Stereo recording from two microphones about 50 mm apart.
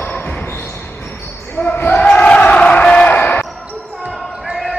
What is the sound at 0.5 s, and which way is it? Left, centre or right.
Basketball bounce, left.